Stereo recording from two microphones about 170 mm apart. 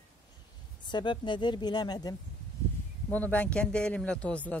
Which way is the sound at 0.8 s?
25° left (ahead or behind).